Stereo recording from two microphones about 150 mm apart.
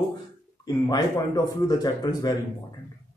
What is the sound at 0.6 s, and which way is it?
Speech, 25° left (ahead or behind).